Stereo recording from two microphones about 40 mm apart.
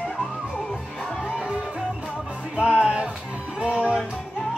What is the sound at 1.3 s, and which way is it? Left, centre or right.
Music, right.